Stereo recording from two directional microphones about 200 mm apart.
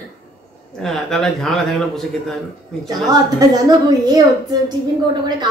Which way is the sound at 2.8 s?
20° right (ahead or behind).